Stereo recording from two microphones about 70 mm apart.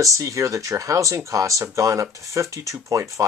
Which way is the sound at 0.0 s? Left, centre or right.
Right.